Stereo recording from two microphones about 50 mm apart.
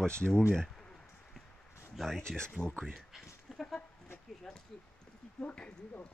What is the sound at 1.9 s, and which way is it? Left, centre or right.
Speech, centre.